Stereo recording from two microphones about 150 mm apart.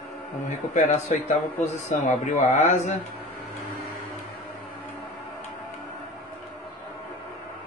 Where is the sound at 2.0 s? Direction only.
55° left (ahead or behind).